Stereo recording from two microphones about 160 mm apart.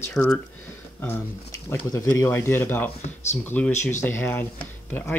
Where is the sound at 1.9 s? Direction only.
20° left (ahead or behind).